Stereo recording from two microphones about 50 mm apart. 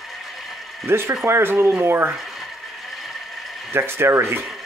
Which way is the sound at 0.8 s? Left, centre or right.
Right.